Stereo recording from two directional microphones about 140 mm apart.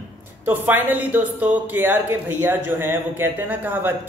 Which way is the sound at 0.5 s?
10° right (ahead or behind).